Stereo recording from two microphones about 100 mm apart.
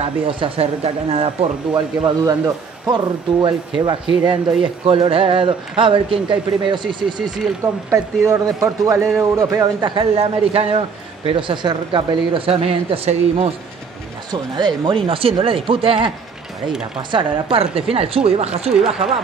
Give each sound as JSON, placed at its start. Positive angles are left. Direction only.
{"t": 0.0, "sound": "speech", "side_deg": -75}
{"t": 1.7, "sound": "speech", "side_deg": -45}
{"t": 4.8, "sound": "speech", "side_deg": -65}
{"t": 7.9, "sound": "speech", "side_deg": -30}
{"t": 9.8, "sound": "speech", "side_deg": -50}
{"t": 10.1, "sound": "speech", "side_deg": -80}
{"t": 11.2, "sound": "speech", "side_deg": -60}
{"t": 14.3, "sound": "speech", "side_deg": -45}
{"t": 15.0, "sound": "speech", "side_deg": -70}
{"t": 17.1, "sound": "speech", "side_deg": -60}